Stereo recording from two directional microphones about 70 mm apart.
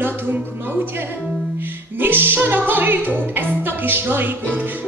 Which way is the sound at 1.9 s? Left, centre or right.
Right.